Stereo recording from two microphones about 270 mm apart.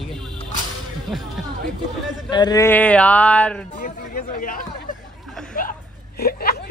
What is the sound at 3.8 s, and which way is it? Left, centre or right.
Speech, left.